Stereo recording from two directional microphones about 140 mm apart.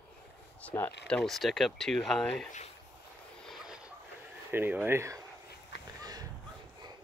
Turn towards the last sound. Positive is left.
turn(degrees=-30)  # may be behind; listen again after turning